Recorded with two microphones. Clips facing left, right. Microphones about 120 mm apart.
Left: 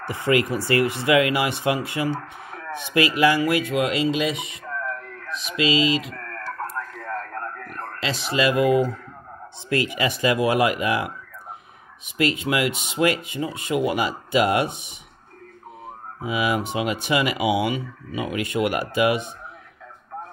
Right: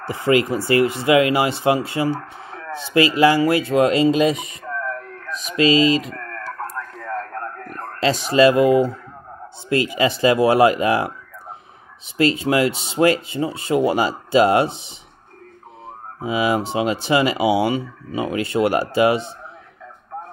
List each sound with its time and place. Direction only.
0.0 s speech: 25° right (ahead or behind)
12.2 s speech: 30° right (ahead or behind)
16.2 s speech: 30° right (ahead or behind)